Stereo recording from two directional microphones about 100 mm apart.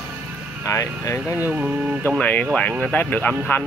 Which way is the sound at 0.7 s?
30° left (ahead or behind).